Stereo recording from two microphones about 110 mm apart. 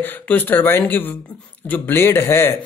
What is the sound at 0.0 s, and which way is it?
Speech, 15° left (ahead or behind).